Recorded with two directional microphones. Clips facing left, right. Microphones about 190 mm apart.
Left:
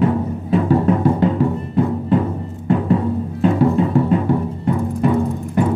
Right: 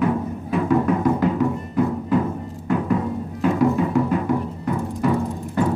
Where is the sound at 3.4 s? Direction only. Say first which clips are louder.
Left 3 dB; 30° left (ahead or behind).